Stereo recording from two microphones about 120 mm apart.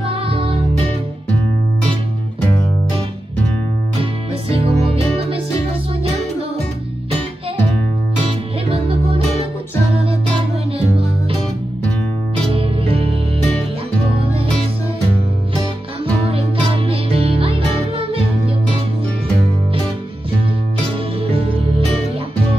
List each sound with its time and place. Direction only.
0.0 s music: 50° right (ahead or behind)
4.0 s music: 50° right (ahead or behind)
8.6 s music: 50° right (ahead or behind)
12.5 s music: 50° right (ahead or behind)
16.3 s music: 50° right (ahead or behind)
21.2 s music: 50° right (ahead or behind)